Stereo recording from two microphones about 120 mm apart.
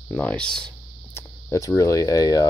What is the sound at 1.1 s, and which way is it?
Speech, 25° left (ahead or behind).